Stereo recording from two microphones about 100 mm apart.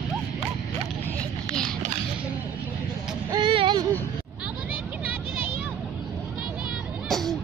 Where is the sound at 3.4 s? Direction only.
60° right (ahead or behind).